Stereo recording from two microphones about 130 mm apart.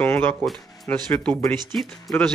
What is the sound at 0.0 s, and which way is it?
Speech, 15° left (ahead or behind).